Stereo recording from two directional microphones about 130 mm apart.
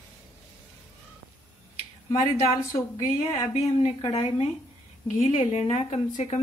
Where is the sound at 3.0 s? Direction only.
55° left (ahead or behind).